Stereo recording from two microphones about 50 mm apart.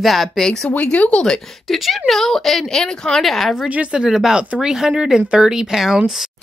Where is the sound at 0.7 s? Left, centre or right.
Left.